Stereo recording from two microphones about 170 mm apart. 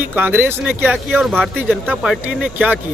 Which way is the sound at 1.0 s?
Centre (ahead or behind).